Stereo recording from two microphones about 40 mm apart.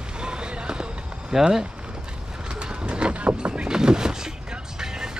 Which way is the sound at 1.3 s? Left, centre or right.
Centre.